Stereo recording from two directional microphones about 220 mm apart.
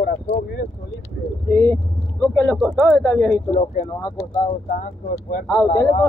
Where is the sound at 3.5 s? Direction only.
30° left (ahead or behind).